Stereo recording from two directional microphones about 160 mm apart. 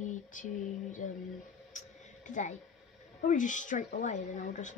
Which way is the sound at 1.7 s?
50° left (ahead or behind).